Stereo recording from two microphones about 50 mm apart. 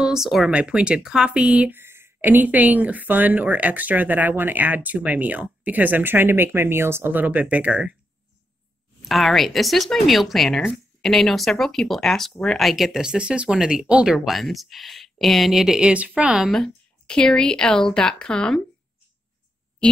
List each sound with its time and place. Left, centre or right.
0.0 s speech: centre
0.5 s speech: right
1.7 s a sound: right
2.2 s speech: right
7.2 s speech: right
9.0 s speech: centre; by 14.1 s right
14.1 s speech: centre
15.8 s speech: right
16.3 s speech: centre
17.0 s speech: centre